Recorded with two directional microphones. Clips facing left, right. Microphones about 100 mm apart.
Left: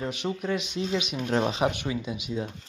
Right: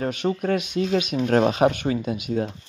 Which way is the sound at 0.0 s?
50° right (ahead or behind).